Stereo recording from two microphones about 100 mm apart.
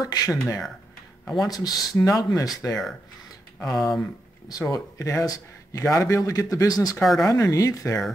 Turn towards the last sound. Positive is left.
turn(degrees=35)  # may be behind; listen again after turning